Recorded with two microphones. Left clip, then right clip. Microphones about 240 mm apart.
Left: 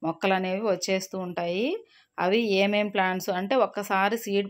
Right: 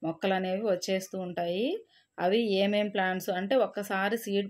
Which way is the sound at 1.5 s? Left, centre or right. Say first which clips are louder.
Left 3 dB; left.